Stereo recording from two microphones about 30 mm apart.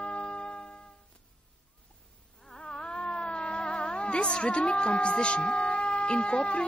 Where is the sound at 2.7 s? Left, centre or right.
Left.